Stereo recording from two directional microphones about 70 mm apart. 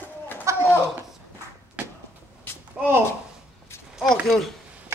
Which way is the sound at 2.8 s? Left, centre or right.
Centre.